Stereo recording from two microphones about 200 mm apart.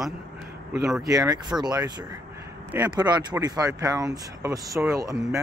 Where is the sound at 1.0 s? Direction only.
15° right (ahead or behind).